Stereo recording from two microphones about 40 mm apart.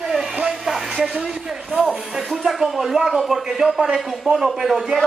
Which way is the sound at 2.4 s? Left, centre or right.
Centre.